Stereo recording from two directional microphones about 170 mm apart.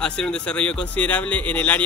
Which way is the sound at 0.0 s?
5° left (ahead or behind).